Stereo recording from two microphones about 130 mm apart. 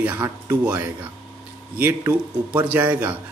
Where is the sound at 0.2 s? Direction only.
20° right (ahead or behind).